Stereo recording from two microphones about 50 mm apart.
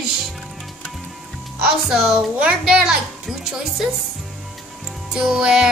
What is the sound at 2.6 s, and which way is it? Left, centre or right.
A woman's voice, centre.